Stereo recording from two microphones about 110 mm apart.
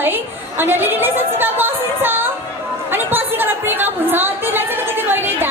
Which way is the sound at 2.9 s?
20° right (ahead or behind).